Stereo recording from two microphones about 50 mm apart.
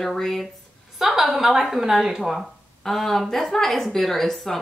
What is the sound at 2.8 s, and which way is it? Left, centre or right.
Speech, centre.